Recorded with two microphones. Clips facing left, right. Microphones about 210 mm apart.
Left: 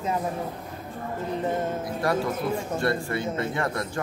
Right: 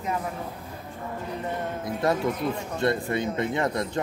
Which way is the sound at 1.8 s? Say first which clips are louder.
Right 1 dB; 20° right (ahead or behind).